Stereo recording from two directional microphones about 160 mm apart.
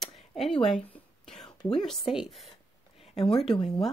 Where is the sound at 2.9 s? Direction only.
40° left (ahead or behind).